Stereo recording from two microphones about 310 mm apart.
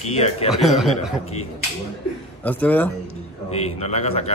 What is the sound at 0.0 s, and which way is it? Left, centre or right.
Speech, left.